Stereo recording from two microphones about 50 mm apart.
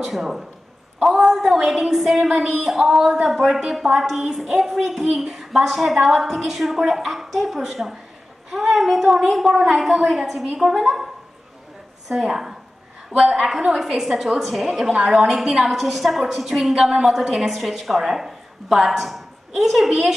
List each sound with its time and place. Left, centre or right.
0.0 s a woman's voice: centre
12.1 s a woman's voice: centre
14.9 s a woman's voice: centre
15.1 s a woman's voice: centre